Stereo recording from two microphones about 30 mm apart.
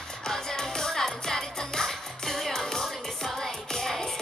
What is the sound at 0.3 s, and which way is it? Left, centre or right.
Music, centre.